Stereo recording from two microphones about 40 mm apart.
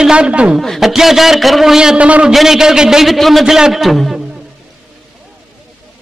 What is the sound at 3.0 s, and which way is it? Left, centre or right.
Speech, centre.